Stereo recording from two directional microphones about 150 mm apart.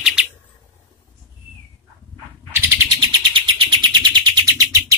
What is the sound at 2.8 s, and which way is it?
Bird, 30° right (ahead or behind).